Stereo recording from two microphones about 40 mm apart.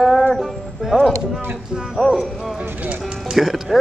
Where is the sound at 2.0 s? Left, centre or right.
Centre.